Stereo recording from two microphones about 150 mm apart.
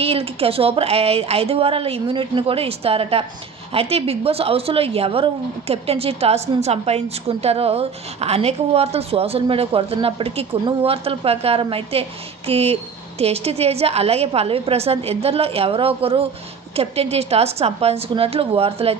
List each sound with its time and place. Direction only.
0.0 s a woman's voice: 40° right (ahead or behind)